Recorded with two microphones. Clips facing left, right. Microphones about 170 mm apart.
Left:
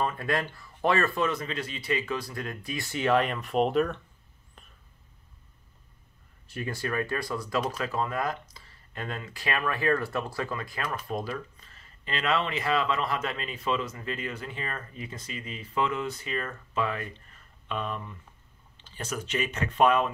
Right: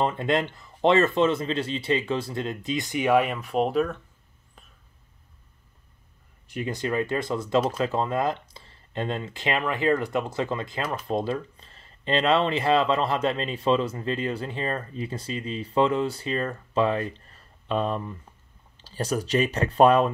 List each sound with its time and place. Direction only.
0.0 s speech: 25° right (ahead or behind); by 4.0 s centre (ahead or behind)
6.4 s speech: 15° right (ahead or behind); by 20.1 s 35° right (ahead or behind)